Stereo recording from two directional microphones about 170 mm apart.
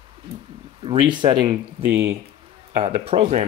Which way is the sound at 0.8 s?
30° right (ahead or behind).